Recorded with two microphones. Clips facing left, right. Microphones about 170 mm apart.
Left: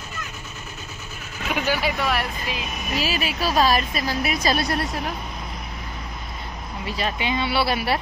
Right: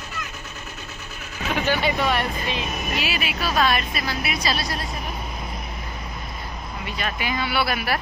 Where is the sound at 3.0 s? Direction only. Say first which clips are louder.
Left 6 dB; 40° left (ahead or behind); by 4.9 s 65° left (ahead or behind).